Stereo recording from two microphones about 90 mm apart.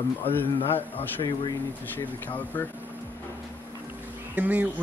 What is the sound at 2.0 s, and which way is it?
Speech, 20° left (ahead or behind).